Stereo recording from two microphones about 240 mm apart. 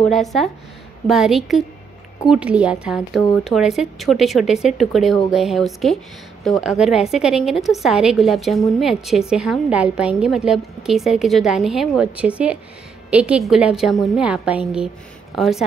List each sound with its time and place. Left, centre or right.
0.0 s a woman's voice: centre